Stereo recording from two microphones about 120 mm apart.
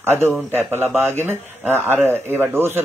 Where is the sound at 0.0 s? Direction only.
20° right (ahead or behind).